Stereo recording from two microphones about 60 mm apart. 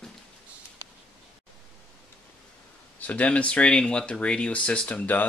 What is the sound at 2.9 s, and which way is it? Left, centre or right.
Speech, left.